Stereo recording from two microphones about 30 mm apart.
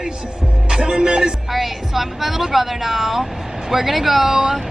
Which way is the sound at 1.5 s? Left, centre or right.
Centre.